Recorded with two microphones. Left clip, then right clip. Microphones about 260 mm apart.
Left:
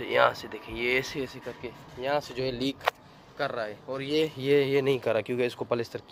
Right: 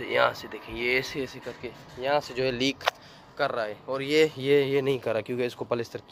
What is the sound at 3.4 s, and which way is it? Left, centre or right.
Speech, centre.